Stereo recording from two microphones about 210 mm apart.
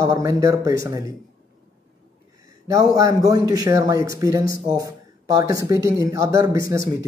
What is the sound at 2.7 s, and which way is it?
A man's voice, 15° right (ahead or behind).